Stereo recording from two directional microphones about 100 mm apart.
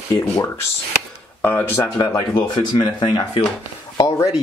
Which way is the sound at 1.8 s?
40° left (ahead or behind).